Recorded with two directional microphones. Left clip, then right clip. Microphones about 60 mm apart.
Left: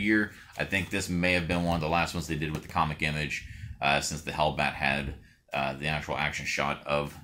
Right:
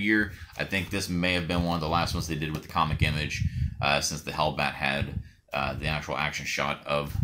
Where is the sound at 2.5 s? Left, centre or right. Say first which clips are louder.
Right 2 dB; right.